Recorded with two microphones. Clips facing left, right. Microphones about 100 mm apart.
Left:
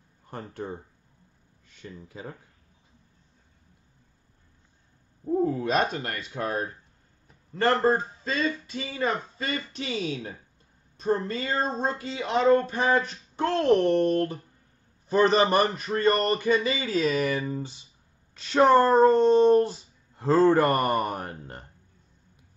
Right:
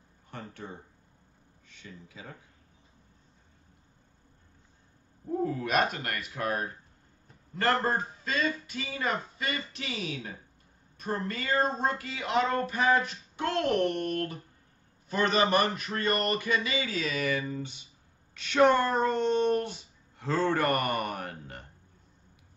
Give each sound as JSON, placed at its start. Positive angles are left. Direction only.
{"t": 0.3, "sound": "speech", "side_deg": 40}
{"t": 5.4, "sound": "speech", "side_deg": 30}